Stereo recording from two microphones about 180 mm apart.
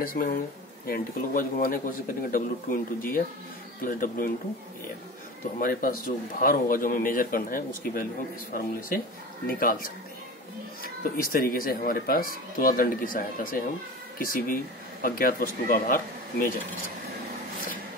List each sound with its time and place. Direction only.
0.0 s speech: 50° left (ahead or behind)
5.6 s speech: 50° left (ahead or behind)